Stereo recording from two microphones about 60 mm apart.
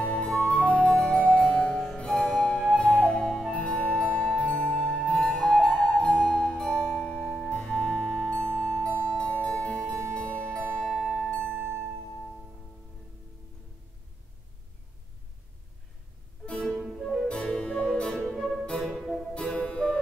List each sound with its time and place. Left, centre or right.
0.0 s music: centre
2.8 s flute: centre
3.5 s music: centre
4.5 s flute: centre
7.5 s music: left; by 11.0 s centre
11.0 s music: centre
11.2 s music: centre
11.5 s music: right
16.4 s music: centre
18.2 s music: centre
19.3 s music: centre